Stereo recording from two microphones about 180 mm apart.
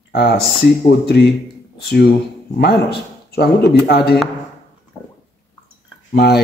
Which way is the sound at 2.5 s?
65° left (ahead or behind).